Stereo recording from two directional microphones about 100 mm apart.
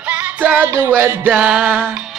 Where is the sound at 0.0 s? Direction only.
15° right (ahead or behind).